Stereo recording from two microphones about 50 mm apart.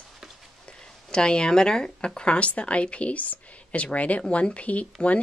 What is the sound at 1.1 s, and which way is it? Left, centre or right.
Speech, centre.